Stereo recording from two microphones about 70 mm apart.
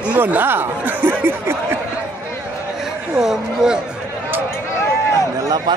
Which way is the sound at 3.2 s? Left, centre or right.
Centre.